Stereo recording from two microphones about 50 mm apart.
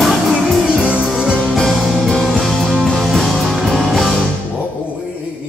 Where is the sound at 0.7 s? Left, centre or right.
Right.